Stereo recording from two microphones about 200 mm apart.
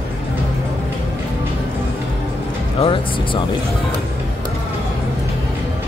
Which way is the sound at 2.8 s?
25° left (ahead or behind).